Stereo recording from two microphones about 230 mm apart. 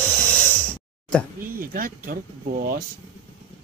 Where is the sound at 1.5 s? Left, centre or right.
Right.